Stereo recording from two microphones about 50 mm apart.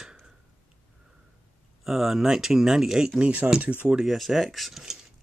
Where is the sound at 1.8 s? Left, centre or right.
Centre.